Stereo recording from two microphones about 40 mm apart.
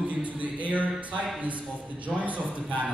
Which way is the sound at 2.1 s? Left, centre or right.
Centre.